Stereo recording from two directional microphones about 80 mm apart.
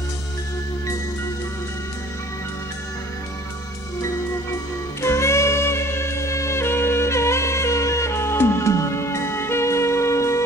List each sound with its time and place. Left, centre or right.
5.0 s music: left